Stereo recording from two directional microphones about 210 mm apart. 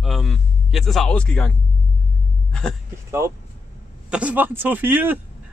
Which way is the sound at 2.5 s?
5° left (ahead or behind).